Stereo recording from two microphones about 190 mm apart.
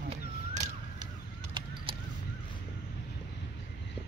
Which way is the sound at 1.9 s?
25° right (ahead or behind).